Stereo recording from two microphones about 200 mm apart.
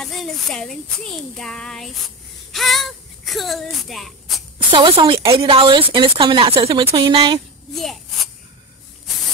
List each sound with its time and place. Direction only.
0.0 s speech: centre (ahead or behind)
4.6 s a woman's voice: 25° right (ahead or behind)
7.7 s speech: centre (ahead or behind)